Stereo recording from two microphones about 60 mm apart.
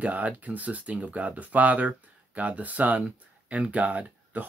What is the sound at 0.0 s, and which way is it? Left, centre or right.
Speech, right.